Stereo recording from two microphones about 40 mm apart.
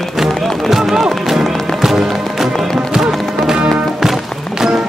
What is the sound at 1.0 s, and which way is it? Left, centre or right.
Music, centre.